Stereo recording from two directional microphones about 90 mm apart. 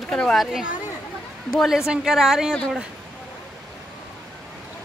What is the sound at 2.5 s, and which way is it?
Speech, 10° left (ahead or behind).